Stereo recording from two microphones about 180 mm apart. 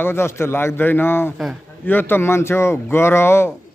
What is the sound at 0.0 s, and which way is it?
Speech, 15° left (ahead or behind).